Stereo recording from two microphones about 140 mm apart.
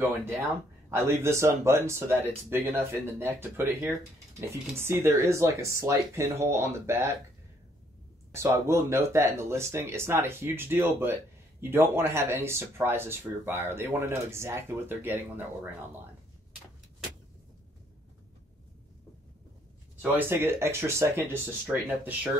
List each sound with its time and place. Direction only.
0.8 s speech: 20° right (ahead or behind)
8.3 s speech: 20° right (ahead or behind)
20.0 s speech: 15° right (ahead or behind)